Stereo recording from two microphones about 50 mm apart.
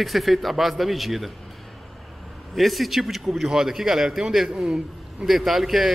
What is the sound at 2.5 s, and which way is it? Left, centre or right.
A man's voice, centre.